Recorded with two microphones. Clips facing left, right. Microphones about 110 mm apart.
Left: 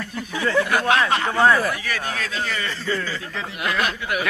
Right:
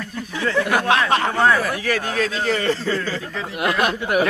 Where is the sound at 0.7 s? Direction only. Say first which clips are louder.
Right 2 dB; 25° right (ahead or behind).